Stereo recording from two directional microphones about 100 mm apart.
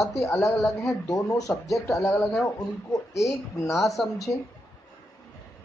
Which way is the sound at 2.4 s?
30° left (ahead or behind).